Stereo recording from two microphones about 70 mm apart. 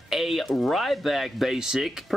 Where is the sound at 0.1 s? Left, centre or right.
Centre.